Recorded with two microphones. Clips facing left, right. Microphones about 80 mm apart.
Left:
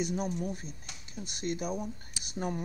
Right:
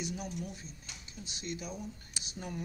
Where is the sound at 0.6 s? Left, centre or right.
Left.